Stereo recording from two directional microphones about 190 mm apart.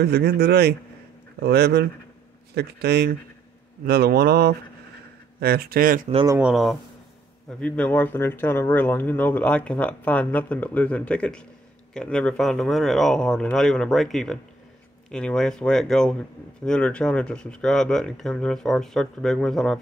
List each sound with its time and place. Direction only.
0.0 s speech: 60° right (ahead or behind)
6.2 s speech: 15° right (ahead or behind)
6.5 s speech: centre (ahead or behind)